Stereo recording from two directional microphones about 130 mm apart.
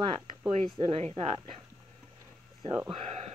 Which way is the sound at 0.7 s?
45° right (ahead or behind).